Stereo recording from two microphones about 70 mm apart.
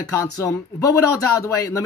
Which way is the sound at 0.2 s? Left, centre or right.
Left.